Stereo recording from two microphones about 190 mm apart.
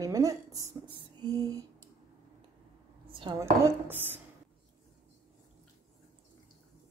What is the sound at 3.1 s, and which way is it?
Dishes, 25° right (ahead or behind).